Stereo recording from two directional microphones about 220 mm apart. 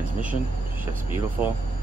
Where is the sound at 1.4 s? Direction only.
10° right (ahead or behind).